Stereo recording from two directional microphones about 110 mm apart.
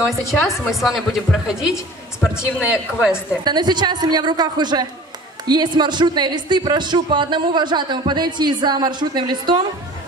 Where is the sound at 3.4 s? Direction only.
40° right (ahead or behind).